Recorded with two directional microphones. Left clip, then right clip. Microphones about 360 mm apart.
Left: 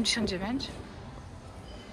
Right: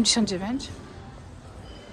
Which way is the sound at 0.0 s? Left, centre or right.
Centre.